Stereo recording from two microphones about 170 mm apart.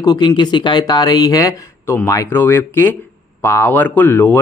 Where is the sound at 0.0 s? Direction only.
25° left (ahead or behind).